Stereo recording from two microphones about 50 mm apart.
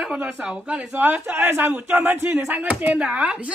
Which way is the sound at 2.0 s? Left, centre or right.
Right.